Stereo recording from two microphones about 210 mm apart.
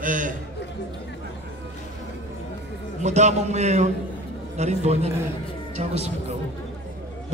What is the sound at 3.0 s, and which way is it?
A man's voice, 35° right (ahead or behind).